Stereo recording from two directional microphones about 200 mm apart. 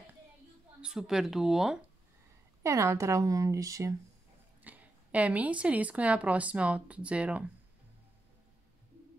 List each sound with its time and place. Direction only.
0.7 s a woman's voice: 5° right (ahead or behind)
2.6 s a woman's voice: 15° right (ahead or behind)